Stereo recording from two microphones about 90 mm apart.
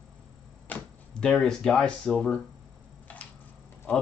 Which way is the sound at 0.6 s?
15° left (ahead or behind).